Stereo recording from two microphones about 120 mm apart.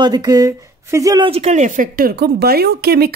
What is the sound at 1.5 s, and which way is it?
Speech, 90° right.